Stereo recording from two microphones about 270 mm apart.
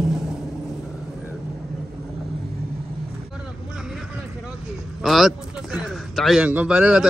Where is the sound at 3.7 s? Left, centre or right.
Centre.